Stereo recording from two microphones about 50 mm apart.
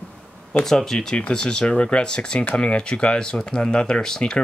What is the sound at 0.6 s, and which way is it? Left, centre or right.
Speech, centre.